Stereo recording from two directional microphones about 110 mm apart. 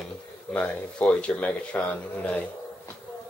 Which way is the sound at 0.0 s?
10° left (ahead or behind).